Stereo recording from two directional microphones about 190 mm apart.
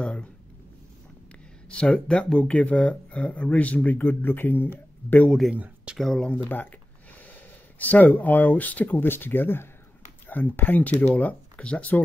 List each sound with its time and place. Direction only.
0.0 s a sound: 5° left (ahead or behind)
1.7 s speech: 5° left (ahead or behind)
7.8 s speech: 10° left (ahead or behind)